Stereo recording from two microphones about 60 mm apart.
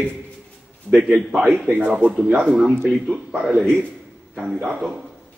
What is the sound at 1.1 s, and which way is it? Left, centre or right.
A man's voice, right.